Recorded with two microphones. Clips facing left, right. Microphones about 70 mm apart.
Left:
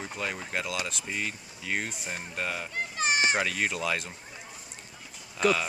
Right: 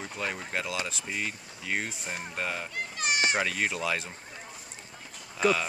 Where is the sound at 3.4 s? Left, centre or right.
Centre.